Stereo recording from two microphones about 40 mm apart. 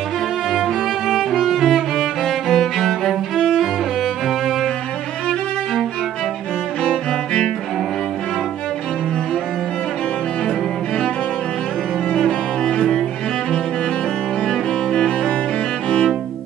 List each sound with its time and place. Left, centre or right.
1.3 s music: centre
3.3 s music: centre
6.8 s music: centre
12.2 s cello: centre
14.5 s cello: centre